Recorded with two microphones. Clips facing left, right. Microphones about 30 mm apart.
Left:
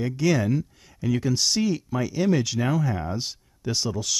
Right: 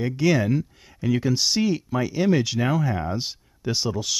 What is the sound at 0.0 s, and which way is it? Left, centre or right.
Speech, centre.